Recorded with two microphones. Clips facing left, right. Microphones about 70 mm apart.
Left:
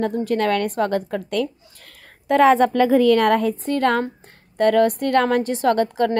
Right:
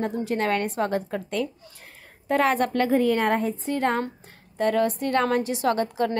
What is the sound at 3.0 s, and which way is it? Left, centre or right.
Speech, left.